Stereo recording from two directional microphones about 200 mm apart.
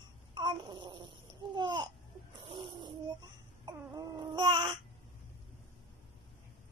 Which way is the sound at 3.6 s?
20° right (ahead or behind).